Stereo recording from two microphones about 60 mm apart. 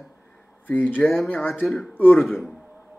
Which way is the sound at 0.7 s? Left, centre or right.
Left.